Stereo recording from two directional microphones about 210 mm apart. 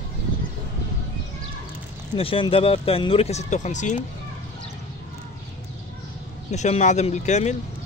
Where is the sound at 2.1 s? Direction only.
25° left (ahead or behind).